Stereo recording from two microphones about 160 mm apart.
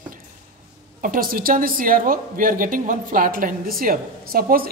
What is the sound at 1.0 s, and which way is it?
A woman's voice, 60° right (ahead or behind).